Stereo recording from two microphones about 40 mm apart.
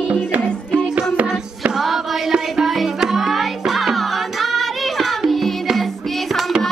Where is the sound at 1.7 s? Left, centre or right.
Centre.